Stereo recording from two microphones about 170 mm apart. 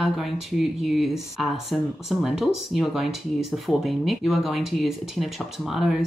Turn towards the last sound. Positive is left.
turn(degrees=0)  # may be behind; listen again after turning